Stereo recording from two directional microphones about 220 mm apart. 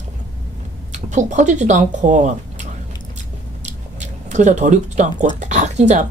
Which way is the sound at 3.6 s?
30° right (ahead or behind).